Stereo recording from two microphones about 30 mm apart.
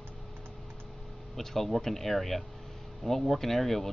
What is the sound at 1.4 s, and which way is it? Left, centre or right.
Speech, centre.